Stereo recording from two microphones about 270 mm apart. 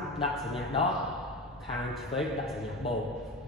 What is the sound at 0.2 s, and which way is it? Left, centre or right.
Speech, centre.